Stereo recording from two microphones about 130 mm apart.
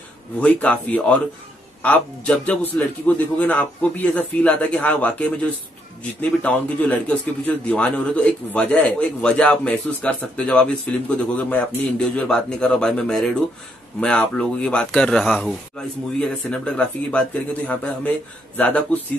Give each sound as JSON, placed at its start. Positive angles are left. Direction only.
{"t": 0.4, "sound": "a man's voice", "side_deg": 10}
{"t": 6.4, "sound": "a man's voice", "side_deg": 10}